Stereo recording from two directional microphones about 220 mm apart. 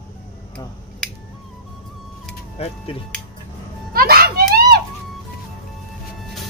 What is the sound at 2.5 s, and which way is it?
Speech, 25° left (ahead or behind).